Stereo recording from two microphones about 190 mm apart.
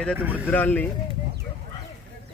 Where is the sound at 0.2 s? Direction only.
10° right (ahead or behind).